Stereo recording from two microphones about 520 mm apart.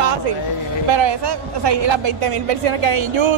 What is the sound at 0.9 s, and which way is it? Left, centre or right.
A woman's voice, right.